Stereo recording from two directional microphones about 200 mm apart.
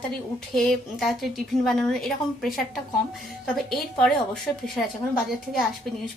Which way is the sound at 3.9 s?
Centre (ahead or behind).